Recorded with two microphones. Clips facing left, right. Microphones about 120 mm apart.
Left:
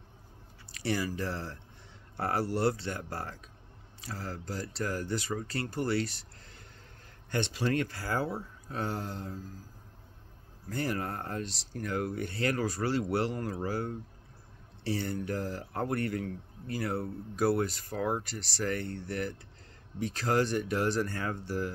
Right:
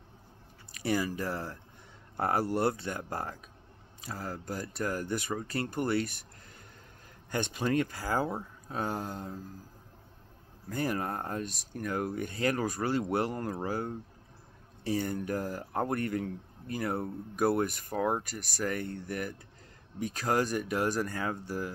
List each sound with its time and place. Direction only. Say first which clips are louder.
0.8 s speech: right 1 dB; 15° right (ahead or behind)
7.2 s speech: even; 15° right (ahead or behind)
10.9 s speech: right 1 dB; 20° right (ahead or behind)
18.1 s speech: right 1 dB; 45° right (ahead or behind)
18.6 s speech: even; 15° right (ahead or behind)